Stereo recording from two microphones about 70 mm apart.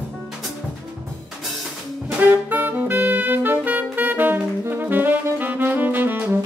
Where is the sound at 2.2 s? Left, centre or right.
Right.